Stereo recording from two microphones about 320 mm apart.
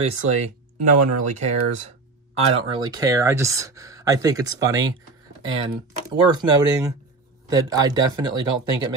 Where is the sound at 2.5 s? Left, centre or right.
Centre.